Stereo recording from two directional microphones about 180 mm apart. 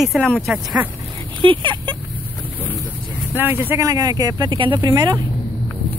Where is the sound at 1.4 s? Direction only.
25° right (ahead or behind).